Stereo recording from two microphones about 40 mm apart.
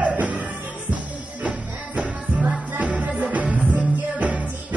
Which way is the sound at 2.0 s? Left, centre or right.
Right.